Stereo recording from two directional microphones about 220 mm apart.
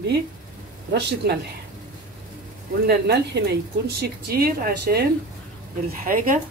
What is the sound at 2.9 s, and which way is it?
A woman's voice, 45° right (ahead or behind).